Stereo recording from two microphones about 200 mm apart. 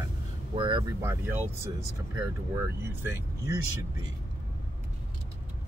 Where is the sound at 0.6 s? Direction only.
20° right (ahead or behind).